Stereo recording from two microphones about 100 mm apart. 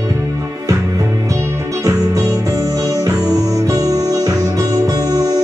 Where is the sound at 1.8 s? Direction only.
35° right (ahead or behind).